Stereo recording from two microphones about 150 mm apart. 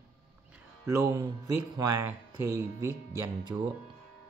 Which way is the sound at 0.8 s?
20° right (ahead or behind).